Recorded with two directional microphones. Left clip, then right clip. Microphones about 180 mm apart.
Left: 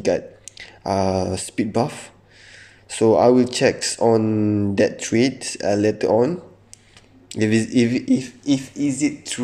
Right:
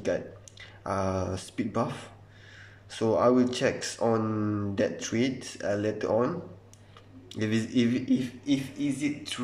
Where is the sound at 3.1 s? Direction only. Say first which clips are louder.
Left 8 dB; 30° left (ahead or behind).